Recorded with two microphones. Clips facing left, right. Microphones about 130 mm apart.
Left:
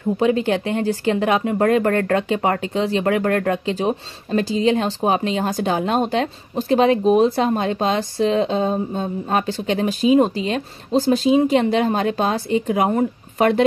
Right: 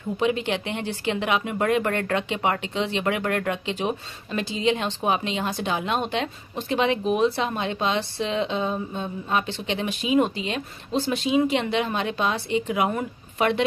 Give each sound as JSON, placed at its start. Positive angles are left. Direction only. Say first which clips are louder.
{"t": 0.2, "sound": "speech", "louder": "left 5 dB", "side_deg": 40}